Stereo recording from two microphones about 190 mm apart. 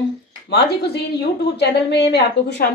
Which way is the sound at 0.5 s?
60° left (ahead or behind).